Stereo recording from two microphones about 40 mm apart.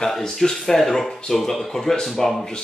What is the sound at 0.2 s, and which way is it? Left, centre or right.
Speech, centre.